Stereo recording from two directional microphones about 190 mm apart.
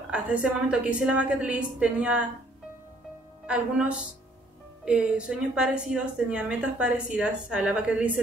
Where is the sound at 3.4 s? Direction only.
5° right (ahead or behind).